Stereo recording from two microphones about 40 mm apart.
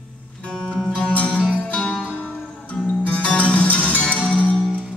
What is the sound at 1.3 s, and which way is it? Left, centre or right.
Music, right.